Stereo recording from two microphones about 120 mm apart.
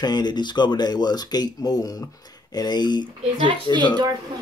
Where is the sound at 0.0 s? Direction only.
35° left (ahead or behind).